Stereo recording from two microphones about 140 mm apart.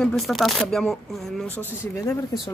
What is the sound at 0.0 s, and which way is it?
Speech, centre (ahead or behind).